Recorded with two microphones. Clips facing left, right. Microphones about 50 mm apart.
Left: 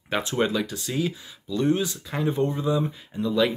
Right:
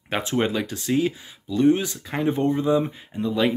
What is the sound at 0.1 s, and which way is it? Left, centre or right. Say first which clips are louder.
Speech: right 1 dB; right.